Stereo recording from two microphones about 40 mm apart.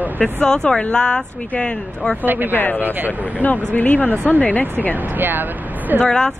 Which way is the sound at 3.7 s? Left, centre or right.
Left.